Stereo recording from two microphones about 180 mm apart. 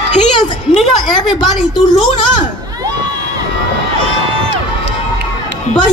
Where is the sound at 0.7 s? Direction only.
25° left (ahead or behind).